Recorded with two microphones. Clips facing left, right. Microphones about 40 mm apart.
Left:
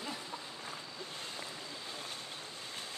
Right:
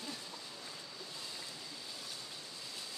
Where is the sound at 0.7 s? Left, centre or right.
Left.